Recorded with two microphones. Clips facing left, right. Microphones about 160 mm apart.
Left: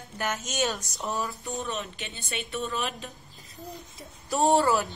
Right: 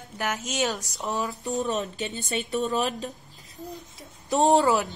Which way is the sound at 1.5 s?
40° right (ahead or behind).